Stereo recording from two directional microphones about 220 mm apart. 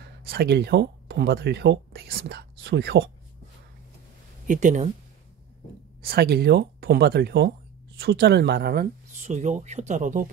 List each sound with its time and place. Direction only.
0.3 s speech: 45° right (ahead or behind)
4.5 s speech: 35° right (ahead or behind)
6.0 s speech: 45° right (ahead or behind)
9.2 s speech: 35° right (ahead or behind)